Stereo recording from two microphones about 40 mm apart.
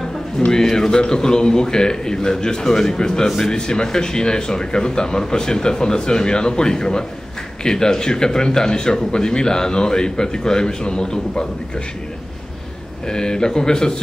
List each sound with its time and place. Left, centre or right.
0.5 s a man's voice: centre
13.0 s speech: centre